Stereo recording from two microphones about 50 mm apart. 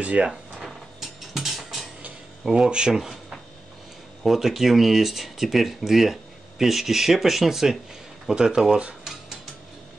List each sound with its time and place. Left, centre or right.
0.0 s speech: right
0.3 s mechanisms: centre
2.4 s speech: centre
4.2 s speech: centre